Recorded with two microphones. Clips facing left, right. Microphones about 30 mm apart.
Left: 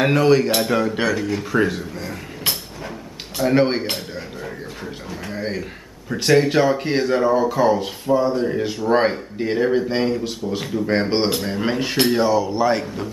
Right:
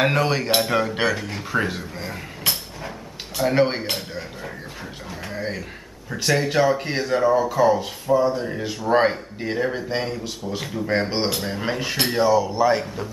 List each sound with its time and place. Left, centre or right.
0.0 s speech: centre
3.3 s speech: centre
5.4 s speech: centre
10.9 s speech: centre
11.3 s speech: centre